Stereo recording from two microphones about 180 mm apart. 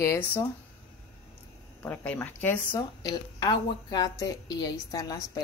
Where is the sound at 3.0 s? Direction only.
20° left (ahead or behind).